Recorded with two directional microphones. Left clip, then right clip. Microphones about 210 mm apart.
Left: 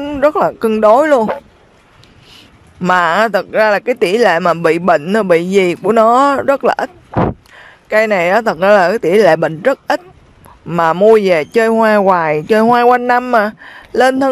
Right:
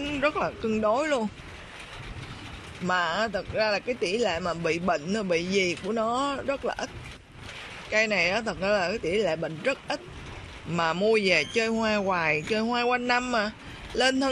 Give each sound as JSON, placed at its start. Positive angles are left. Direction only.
{"t": 0.0, "sound": "speech", "side_deg": 30}
{"t": 2.8, "sound": "speech", "side_deg": 40}
{"t": 7.9, "sound": "speech", "side_deg": 35}